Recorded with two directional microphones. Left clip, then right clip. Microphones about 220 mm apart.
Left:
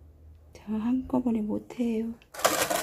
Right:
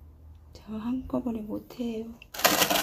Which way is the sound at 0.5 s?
30° left (ahead or behind).